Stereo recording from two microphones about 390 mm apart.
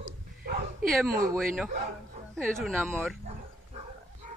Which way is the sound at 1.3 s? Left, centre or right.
Centre.